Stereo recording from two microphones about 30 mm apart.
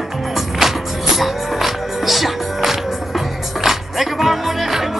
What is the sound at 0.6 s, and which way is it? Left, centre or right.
Music, centre.